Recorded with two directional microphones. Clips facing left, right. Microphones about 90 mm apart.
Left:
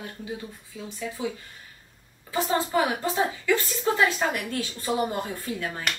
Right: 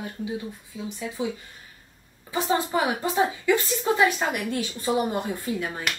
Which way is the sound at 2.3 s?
20° right (ahead or behind).